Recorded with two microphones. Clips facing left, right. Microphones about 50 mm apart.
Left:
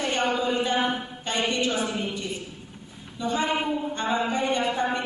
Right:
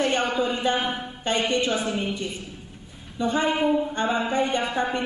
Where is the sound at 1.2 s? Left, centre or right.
Right.